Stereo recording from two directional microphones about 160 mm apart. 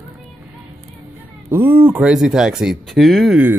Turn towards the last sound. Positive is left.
turn(degrees=0)  # may be behind; listen again after turning